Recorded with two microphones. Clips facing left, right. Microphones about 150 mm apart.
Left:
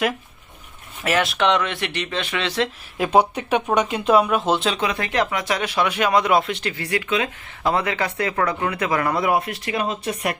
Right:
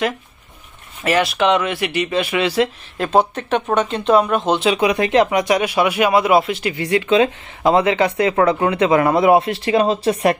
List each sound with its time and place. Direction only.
1.0 s speech: centre (ahead or behind)
3.0 s speech: 10° left (ahead or behind)
4.6 s speech: 15° right (ahead or behind)
6.7 s speech: 20° right (ahead or behind)